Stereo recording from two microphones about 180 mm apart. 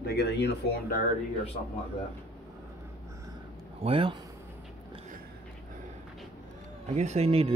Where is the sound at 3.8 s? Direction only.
30° right (ahead or behind).